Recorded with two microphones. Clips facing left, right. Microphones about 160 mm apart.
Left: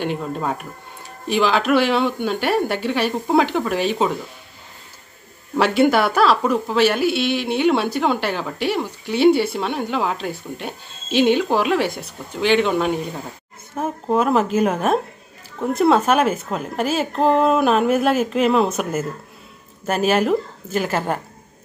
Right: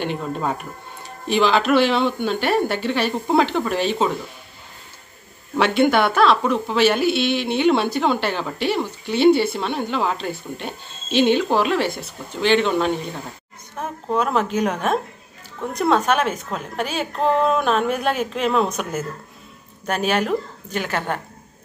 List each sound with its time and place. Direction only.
0.0 s a woman's voice: 5° left (ahead or behind)
5.6 s a woman's voice: 5° left (ahead or behind)